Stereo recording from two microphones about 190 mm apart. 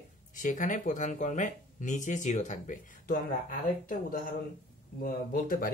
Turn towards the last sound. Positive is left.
turn(degrees=50)  # may be behind; listen again after turning